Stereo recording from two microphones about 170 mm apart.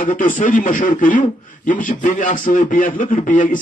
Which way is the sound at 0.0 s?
50° left (ahead or behind).